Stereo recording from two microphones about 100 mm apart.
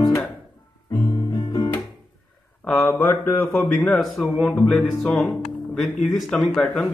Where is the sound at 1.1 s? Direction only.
45° left (ahead or behind).